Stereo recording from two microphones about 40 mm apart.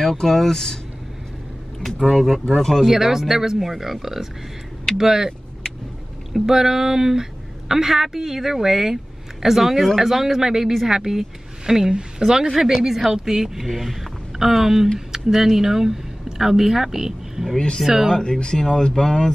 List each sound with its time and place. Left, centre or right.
0.0 s speech: centre
2.0 s speech: centre
2.9 s speech: centre
6.3 s a woman's voice: centre
18.1 s speech: centre